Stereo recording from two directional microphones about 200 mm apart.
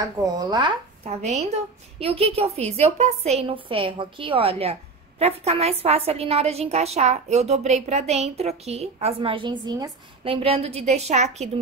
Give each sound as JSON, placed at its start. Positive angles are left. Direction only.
{"t": 0.0, "sound": "a woman's voice", "side_deg": -20}